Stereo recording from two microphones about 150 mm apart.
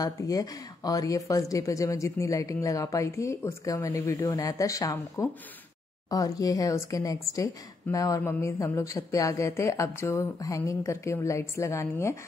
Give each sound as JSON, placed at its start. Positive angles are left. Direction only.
{"t": 0.0, "sound": "speech", "side_deg": 25}